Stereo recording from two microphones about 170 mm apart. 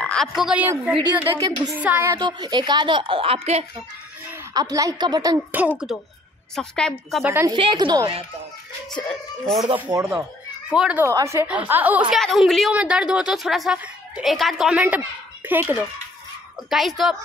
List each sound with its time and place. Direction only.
0.0 s a woman's voice: 5° left (ahead or behind); by 2.1 s 10° right (ahead or behind)
2.1 s speech: 25° right (ahead or behind)
4.6 s speech: 20° right (ahead or behind)
5.5 s a woman's voice: 10° right (ahead or behind)
6.5 s a woman's voice: 5° left (ahead or behind)
7.2 s a woman's voice: 15° right (ahead or behind)
7.5 s speech: 30° right (ahead or behind)
8.9 s a woman's voice: 5° left (ahead or behind)
9.8 s speech: 20° right (ahead or behind)
10.7 s a woman's voice: 5° right (ahead or behind)
16.7 s a woman's voice: centre (ahead or behind)